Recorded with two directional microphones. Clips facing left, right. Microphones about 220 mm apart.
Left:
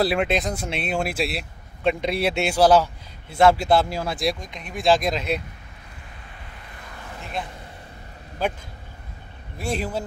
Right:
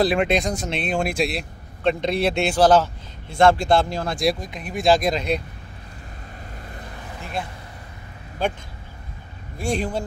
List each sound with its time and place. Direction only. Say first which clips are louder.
0.0 s speech: right 2 dB; 5° left (ahead or behind)
9.6 s a man's voice: right 2 dB; 5° left (ahead or behind)